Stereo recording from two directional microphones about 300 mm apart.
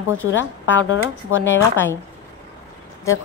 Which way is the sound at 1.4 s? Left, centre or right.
Centre.